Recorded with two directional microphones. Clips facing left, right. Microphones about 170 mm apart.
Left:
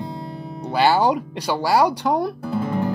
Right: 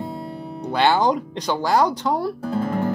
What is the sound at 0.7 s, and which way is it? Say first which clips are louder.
Music: left 1 dB; 5° left (ahead or behind).